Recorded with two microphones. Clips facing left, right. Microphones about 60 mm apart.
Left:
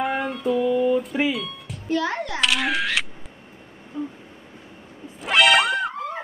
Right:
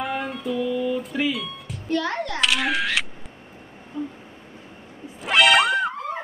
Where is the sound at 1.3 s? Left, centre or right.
Centre.